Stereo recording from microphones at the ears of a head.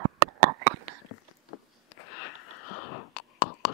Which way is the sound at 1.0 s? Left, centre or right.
Left.